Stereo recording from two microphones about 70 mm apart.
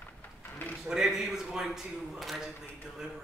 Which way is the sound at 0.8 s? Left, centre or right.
Centre.